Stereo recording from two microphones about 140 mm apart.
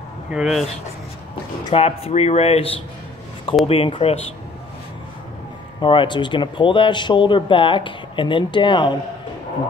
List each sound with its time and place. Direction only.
0.3 s speech: 5° right (ahead or behind)
1.7 s speech: 45° left (ahead or behind)
5.8 s speech: 35° left (ahead or behind)